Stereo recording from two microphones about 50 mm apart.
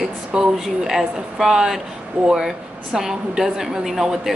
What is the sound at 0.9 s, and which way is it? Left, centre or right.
Speech, centre.